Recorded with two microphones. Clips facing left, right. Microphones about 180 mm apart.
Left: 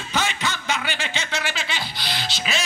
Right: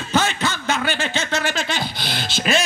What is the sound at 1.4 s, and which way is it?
Music, 45° right (ahead or behind).